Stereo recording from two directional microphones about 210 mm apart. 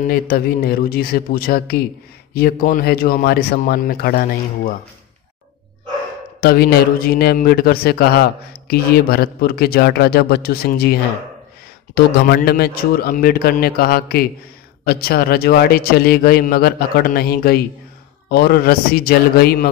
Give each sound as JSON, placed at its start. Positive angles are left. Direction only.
{"t": 0.0, "sound": "speech", "side_deg": 45}
{"t": 6.4, "sound": "speech", "side_deg": 45}